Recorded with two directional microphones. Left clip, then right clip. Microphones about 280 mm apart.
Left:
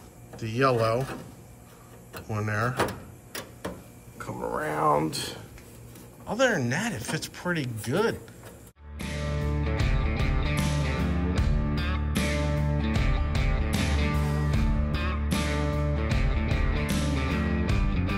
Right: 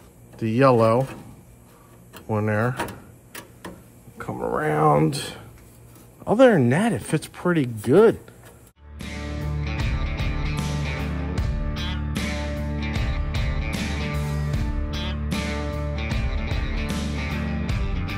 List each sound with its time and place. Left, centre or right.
0.4 s speech: centre
2.3 s speech: centre
4.2 s speech: right
8.9 s music: centre